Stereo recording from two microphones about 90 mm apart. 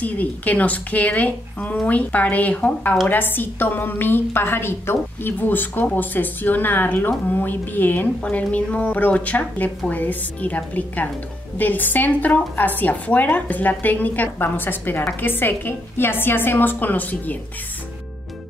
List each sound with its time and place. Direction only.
0.0 s a woman's voice: 20° left (ahead or behind)